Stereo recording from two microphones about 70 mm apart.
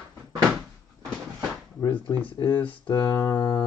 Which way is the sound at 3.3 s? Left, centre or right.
Left.